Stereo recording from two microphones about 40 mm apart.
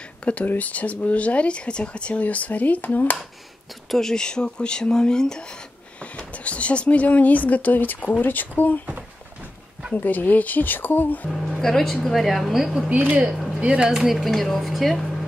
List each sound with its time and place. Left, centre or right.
0.2 s speech: left
3.9 s speech: centre
5.9 s speech: left
9.9 s speech: left
11.2 s speech: centre
12.6 s speech: centre
14.1 s speech: centre